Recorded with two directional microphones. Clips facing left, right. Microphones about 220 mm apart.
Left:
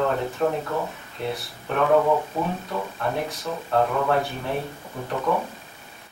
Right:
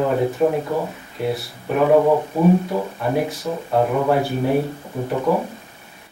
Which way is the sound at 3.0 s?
10° right (ahead or behind).